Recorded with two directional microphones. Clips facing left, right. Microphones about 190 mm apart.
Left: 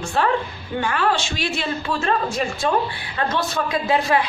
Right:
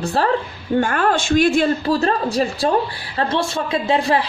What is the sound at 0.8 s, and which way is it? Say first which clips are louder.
Speech: right 3 dB; 50° right (ahead or behind).